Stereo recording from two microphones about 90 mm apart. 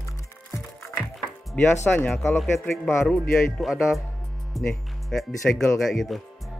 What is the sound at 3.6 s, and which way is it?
Speech, 5° right (ahead or behind).